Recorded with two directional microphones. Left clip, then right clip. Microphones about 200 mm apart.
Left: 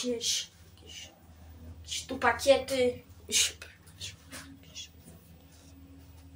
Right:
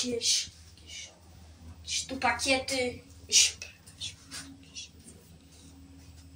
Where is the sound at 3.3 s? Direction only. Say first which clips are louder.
Right 4 dB; 25° left (ahead or behind).